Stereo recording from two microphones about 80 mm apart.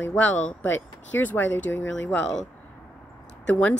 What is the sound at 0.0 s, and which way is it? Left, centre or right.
Speech, left.